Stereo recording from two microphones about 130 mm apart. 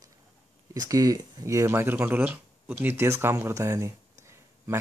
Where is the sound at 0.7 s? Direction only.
30° right (ahead or behind).